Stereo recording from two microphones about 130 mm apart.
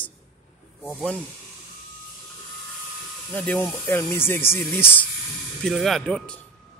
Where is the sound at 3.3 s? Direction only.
15° left (ahead or behind).